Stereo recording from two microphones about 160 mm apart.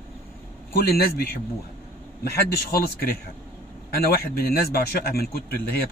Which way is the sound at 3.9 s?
70° left (ahead or behind).